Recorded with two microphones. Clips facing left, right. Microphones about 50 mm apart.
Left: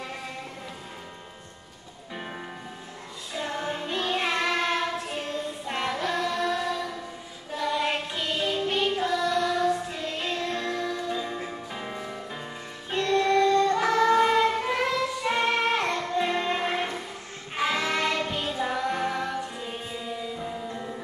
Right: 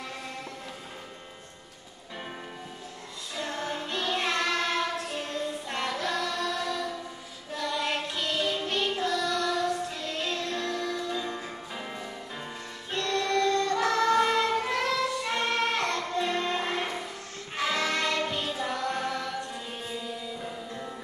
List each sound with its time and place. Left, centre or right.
3.3 s child singing: centre
7.5 s music: centre